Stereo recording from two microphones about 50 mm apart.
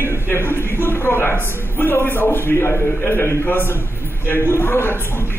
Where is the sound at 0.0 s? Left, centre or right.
Left.